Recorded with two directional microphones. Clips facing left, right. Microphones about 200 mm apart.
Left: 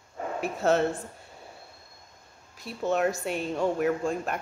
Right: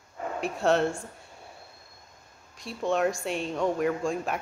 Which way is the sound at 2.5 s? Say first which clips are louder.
Even; 5° left (ahead or behind).